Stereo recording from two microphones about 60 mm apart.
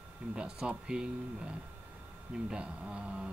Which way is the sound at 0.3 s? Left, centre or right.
Centre.